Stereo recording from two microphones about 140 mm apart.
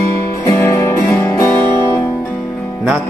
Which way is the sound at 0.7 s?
20° left (ahead or behind).